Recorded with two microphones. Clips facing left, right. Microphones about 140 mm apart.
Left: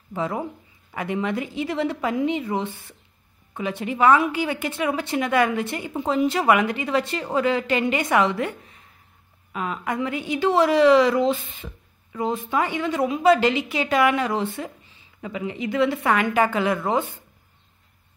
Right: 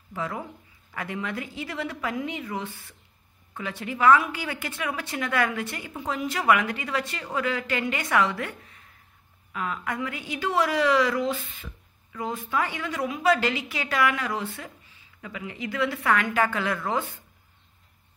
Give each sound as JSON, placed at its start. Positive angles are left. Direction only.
{"t": 0.1, "sound": "a woman's voice", "side_deg": 25}